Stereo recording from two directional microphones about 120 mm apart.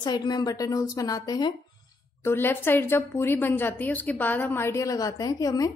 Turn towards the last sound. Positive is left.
turn(degrees=30)  # may be behind; listen again after turning